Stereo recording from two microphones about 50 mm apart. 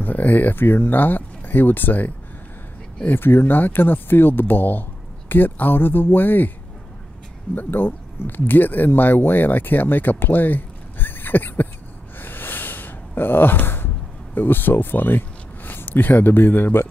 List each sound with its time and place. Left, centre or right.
0.0 s speech: left
3.1 s speech: left
7.5 s speech: left
12.2 s a sound: left
14.3 s speech: left